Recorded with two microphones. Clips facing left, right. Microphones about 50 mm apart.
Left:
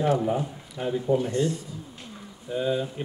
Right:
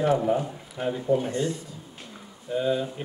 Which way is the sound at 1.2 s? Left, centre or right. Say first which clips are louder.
Left 2 dB; right.